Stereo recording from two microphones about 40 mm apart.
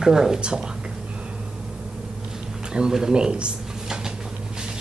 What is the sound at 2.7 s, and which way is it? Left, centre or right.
Speech, centre.